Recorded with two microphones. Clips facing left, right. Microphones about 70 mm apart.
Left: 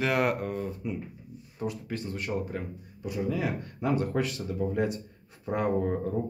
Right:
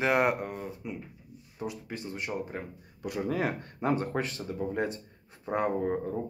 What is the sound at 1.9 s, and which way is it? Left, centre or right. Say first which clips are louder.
Speech: left 1 dB; right.